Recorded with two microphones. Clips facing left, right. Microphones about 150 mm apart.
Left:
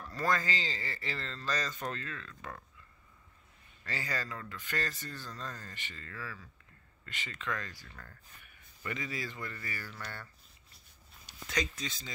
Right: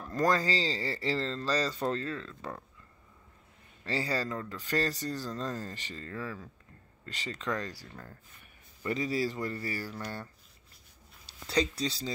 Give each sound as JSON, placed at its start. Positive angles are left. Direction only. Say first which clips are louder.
{"t": 0.1, "sound": "speech", "louder": "right 5 dB", "side_deg": -35}
{"t": 3.8, "sound": "speech", "louder": "right 7 dB", "side_deg": -30}
{"t": 11.2, "sound": "speech", "louder": "right 6 dB", "side_deg": -30}